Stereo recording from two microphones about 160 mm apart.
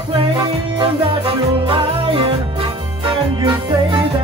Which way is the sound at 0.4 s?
30° right (ahead or behind).